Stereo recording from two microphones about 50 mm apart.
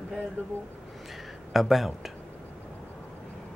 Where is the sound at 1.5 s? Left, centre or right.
Centre.